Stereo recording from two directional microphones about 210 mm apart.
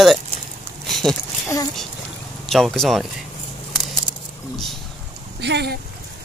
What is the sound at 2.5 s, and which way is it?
Speech, centre (ahead or behind).